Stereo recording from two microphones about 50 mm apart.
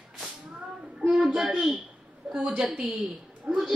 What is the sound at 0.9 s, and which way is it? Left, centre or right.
Speech, centre.